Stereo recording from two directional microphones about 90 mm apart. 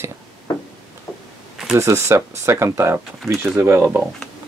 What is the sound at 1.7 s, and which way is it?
Speech, 30° right (ahead or behind).